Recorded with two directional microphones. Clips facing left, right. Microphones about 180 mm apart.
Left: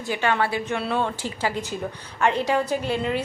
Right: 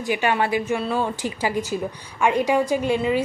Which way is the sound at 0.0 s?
15° right (ahead or behind).